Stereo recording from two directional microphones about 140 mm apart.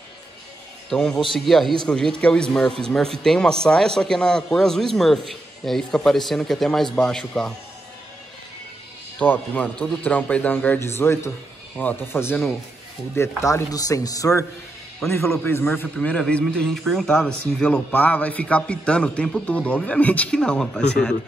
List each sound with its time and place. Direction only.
0.8 s speech: 5° left (ahead or behind)
9.2 s a man's voice: 10° left (ahead or behind)